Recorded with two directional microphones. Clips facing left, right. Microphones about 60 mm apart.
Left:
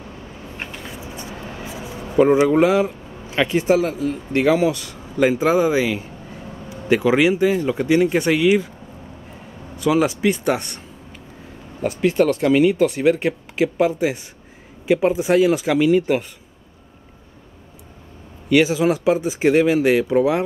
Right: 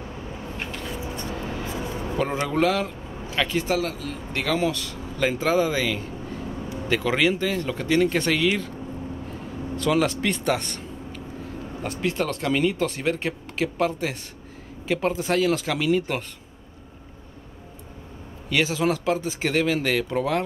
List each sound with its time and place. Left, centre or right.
0.7 s speech: centre
9.8 s speech: centre
11.8 s speech: centre
18.5 s speech: centre